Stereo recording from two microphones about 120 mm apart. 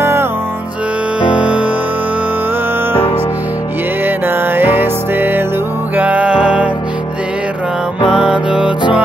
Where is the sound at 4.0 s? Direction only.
15° right (ahead or behind).